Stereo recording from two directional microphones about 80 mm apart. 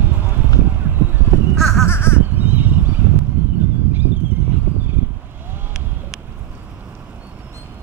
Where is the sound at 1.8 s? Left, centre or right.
Left.